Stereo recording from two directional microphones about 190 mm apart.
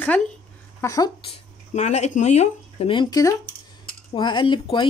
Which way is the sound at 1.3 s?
35° left (ahead or behind).